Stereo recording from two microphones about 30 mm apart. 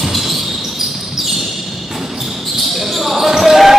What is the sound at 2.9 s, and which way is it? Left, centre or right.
Basketball bounce, centre.